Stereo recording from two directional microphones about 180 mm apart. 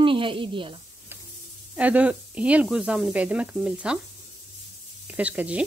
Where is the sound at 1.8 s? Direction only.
5° right (ahead or behind).